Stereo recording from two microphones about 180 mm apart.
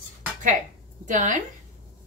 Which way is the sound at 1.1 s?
45° right (ahead or behind).